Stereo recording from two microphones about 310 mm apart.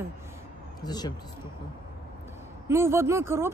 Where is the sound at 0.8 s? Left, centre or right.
Centre.